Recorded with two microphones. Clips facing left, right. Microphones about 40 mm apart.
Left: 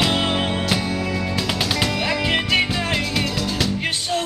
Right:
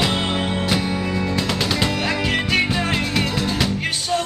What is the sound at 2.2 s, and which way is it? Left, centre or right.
Music, centre.